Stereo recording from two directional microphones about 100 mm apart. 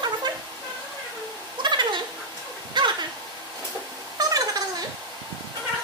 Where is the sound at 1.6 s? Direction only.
50° right (ahead or behind).